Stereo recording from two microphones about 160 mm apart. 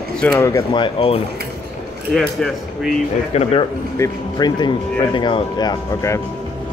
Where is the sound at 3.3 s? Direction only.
45° left (ahead or behind).